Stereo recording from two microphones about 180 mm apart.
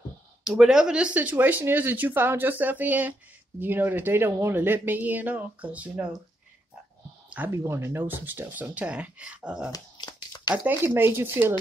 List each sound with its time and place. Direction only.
0.4 s speech: 5° right (ahead or behind)
7.2 s speech: 10° right (ahead or behind)
9.7 s shuffling cards: 20° left (ahead or behind)
10.5 s speech: 10° right (ahead or behind)